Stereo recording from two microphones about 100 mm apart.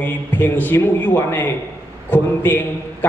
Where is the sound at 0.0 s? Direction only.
20° left (ahead or behind).